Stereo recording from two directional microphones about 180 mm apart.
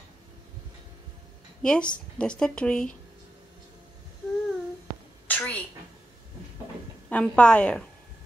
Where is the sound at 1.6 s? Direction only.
5° left (ahead or behind).